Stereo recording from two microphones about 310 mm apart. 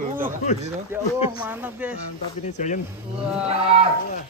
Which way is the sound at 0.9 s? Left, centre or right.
Centre.